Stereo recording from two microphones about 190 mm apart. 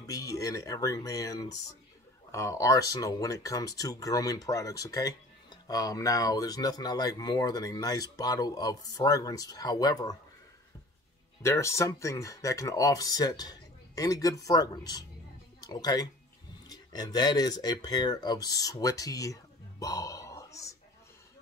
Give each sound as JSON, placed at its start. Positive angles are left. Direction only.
{"t": 0.0, "sound": "speech", "side_deg": 20}
{"t": 11.4, "sound": "speech", "side_deg": 15}
{"t": 19.8, "sound": "a sound", "side_deg": 15}